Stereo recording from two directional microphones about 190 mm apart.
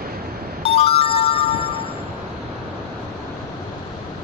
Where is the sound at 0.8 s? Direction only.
30° left (ahead or behind).